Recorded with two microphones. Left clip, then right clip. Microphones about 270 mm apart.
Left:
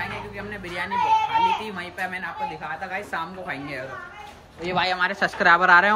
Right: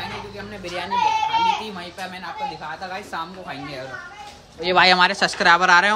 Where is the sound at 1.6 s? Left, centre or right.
Centre.